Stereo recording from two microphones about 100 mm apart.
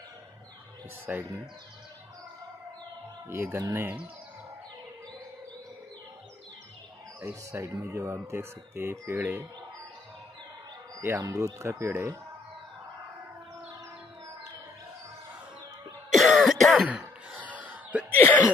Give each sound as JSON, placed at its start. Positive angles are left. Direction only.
{"t": 1.1, "sound": "speech", "side_deg": -15}
{"t": 3.3, "sound": "speech", "side_deg": -25}
{"t": 3.8, "sound": "speech", "side_deg": -15}
{"t": 7.2, "sound": "speech", "side_deg": -20}
{"t": 7.6, "sound": "speech", "side_deg": -30}
{"t": 11.0, "sound": "speech", "side_deg": -30}
{"t": 16.1, "sound": "cough", "side_deg": 0}
{"t": 16.8, "sound": "a sound", "side_deg": -10}
{"t": 17.5, "sound": "music", "side_deg": -15}
{"t": 18.1, "sound": "a sound", "side_deg": 20}